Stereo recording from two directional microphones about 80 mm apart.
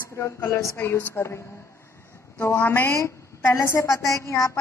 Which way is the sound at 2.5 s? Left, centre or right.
Left.